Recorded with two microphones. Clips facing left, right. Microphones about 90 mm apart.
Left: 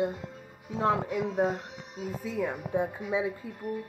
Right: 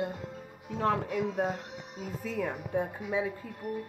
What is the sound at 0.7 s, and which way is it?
Speech, 15° left (ahead or behind).